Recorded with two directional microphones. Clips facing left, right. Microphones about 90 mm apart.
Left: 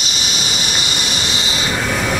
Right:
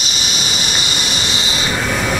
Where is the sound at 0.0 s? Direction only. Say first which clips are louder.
Even; 10° right (ahead or behind).